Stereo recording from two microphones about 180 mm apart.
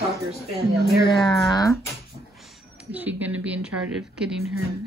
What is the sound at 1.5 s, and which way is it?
Speech, 20° left (ahead or behind).